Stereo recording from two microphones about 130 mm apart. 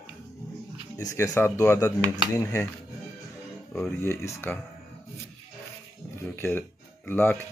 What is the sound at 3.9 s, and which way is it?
Speech, 20° left (ahead or behind).